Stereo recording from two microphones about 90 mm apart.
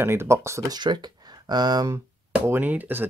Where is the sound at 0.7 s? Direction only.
55° right (ahead or behind).